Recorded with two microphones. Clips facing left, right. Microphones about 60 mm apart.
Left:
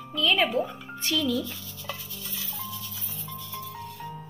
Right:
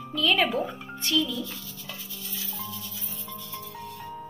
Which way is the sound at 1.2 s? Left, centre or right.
Left.